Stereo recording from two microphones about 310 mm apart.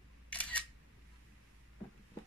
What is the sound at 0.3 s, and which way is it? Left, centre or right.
Single-lens reflex camera, centre.